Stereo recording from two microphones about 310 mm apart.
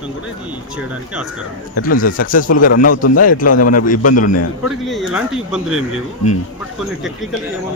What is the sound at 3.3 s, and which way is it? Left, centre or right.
Speech, left.